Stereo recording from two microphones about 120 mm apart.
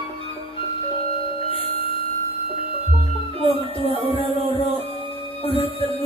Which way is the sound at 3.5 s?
50° left (ahead or behind).